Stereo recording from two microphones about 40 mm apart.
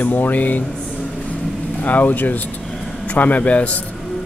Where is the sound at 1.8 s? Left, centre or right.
Left.